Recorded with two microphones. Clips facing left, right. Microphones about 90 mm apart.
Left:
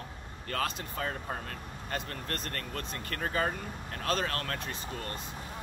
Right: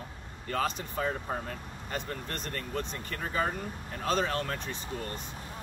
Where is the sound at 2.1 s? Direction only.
15° right (ahead or behind).